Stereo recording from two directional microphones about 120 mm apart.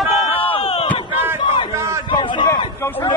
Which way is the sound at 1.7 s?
25° right (ahead or behind).